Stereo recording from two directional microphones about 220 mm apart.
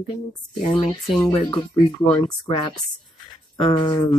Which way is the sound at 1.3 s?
25° left (ahead or behind).